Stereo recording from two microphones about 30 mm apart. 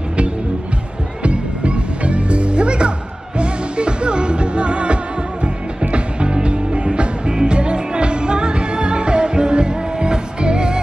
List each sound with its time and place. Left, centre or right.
1.2 s music: right